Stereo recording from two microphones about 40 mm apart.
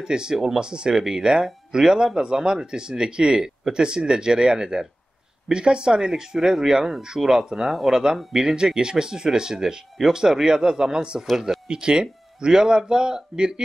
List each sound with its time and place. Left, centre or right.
0.0 s speech: centre